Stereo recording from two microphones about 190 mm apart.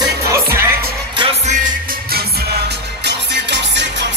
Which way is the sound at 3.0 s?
65° right (ahead or behind).